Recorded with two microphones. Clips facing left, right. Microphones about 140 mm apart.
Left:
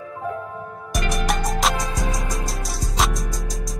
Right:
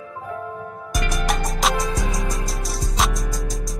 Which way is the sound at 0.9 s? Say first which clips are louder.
Left 1 dB; centre (ahead or behind).